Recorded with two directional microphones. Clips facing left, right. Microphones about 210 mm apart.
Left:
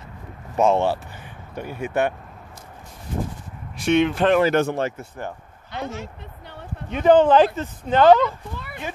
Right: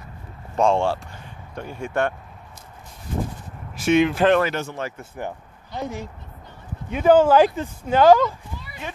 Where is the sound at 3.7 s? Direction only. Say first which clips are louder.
Right 1 dB; 5° right (ahead or behind).